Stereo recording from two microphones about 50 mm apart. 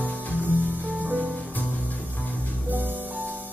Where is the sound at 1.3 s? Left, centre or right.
Left.